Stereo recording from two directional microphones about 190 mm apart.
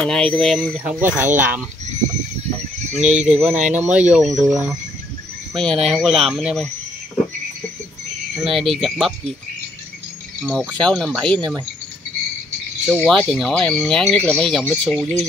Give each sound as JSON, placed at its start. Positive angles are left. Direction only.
{"t": 0.0, "sound": "speech", "side_deg": 5}
{"t": 2.9, "sound": "speech", "side_deg": -35}
{"t": 3.3, "sound": "speech", "side_deg": 0}
{"t": 8.5, "sound": "speech", "side_deg": 0}
{"t": 10.7, "sound": "speech", "side_deg": 5}
{"t": 12.8, "sound": "speech", "side_deg": 5}